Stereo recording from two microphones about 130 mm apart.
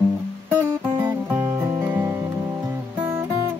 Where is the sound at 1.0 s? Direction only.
15° right (ahead or behind).